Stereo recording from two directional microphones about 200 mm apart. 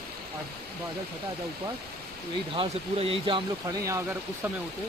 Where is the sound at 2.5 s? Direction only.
25° right (ahead or behind).